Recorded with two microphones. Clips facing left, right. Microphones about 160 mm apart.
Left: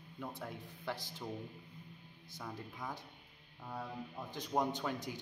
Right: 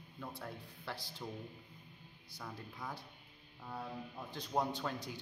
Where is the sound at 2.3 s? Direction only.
15° left (ahead or behind).